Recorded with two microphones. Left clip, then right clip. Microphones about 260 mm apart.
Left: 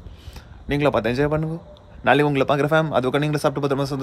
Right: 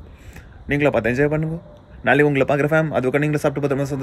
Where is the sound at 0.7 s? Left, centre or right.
Centre.